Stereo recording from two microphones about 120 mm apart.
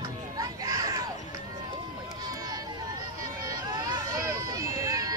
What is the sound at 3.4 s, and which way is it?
Run, 30° right (ahead or behind).